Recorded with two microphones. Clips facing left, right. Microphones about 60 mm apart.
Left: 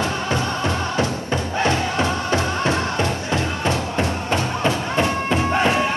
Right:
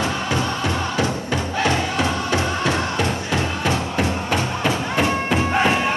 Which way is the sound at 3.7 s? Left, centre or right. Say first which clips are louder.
Even; right.